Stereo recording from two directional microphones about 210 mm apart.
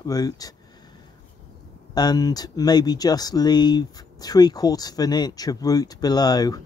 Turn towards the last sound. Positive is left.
turn(degrees=20)  # may be behind; listen again after turning